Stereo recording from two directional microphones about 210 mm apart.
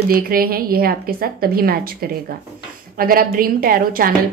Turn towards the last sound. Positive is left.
turn(degrees=-40)  # may be behind; listen again after turning